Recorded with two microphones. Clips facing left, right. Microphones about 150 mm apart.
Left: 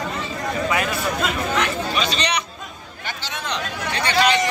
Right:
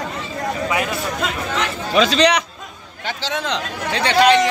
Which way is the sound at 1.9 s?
90° right.